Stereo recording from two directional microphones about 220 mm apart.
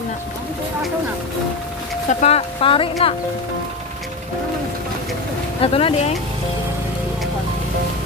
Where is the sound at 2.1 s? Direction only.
30° left (ahead or behind).